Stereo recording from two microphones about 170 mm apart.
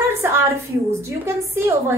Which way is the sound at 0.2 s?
15° right (ahead or behind).